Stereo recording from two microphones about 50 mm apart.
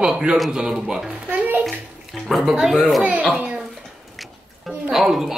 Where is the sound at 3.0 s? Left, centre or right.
Right.